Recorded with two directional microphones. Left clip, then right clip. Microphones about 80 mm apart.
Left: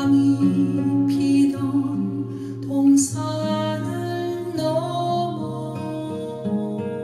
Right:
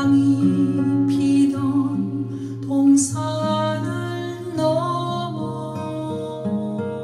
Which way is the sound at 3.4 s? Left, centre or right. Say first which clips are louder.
Right 3 dB; left.